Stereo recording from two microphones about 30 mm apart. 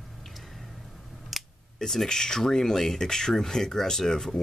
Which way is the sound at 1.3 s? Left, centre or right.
Centre.